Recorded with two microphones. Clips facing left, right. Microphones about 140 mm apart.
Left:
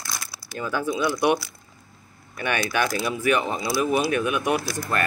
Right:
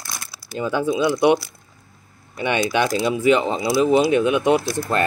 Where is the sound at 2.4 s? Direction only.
20° right (ahead or behind).